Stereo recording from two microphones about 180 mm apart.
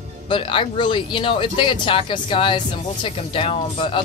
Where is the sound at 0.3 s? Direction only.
30° left (ahead or behind).